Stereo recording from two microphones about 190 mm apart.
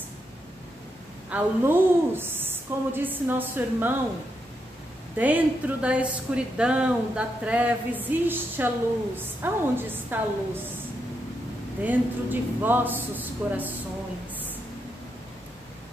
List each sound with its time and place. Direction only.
1.3 s a woman's voice: 10° right (ahead or behind)
5.1 s a woman's voice: 10° right (ahead or behind)
11.8 s a woman's voice: 10° right (ahead or behind)